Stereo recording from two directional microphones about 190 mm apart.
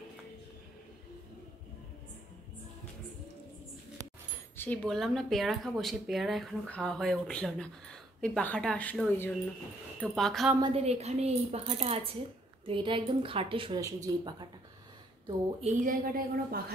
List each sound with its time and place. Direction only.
4.6 s speech: 5° left (ahead or behind)
10.6 s a woman's voice: 35° right (ahead or behind)
15.6 s a woman's voice: 45° right (ahead or behind)